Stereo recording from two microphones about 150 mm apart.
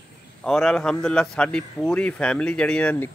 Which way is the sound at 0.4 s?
5° left (ahead or behind).